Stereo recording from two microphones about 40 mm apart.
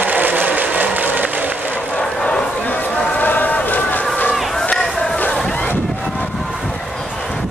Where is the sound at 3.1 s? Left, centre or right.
Left.